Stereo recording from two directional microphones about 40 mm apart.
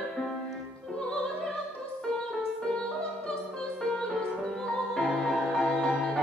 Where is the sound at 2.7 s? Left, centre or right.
Left.